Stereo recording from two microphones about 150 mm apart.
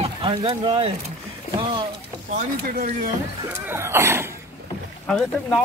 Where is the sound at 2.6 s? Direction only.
80° right.